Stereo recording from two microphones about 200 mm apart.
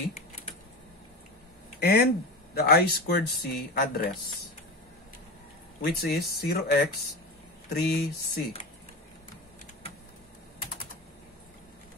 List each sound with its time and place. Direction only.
1.8 s speech: 50° left (ahead or behind)
5.8 s speech: 50° left (ahead or behind)